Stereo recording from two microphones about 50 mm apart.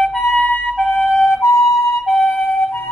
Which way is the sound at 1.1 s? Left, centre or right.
Centre.